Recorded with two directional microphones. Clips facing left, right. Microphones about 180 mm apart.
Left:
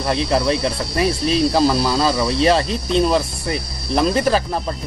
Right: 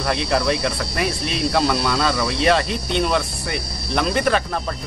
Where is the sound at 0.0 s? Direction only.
30° left (ahead or behind).